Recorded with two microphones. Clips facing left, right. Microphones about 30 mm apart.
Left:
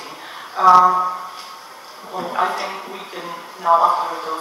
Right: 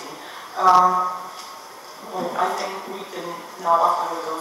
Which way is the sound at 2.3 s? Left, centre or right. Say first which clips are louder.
Left 4 dB; left.